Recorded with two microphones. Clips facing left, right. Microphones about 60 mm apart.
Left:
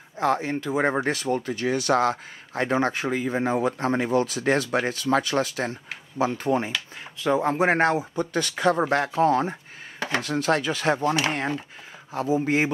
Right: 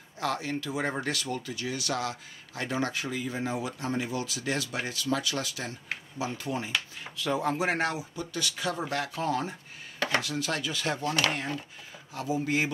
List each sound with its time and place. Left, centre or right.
0.2 s speech: left
7.2 s speech: left
9.9 s dishes: left
10.2 s speech: left